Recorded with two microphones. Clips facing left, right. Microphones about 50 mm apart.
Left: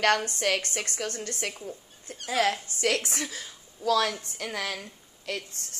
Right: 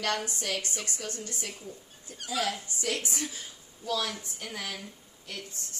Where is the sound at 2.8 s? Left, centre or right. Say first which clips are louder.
Left 5 dB; left.